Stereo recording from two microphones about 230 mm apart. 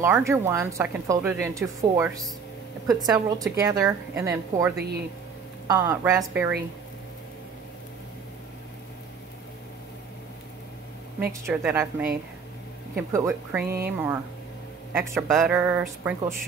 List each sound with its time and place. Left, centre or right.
0.0 s a woman's voice: centre
11.4 s a woman's voice: centre
13.1 s a woman's voice: centre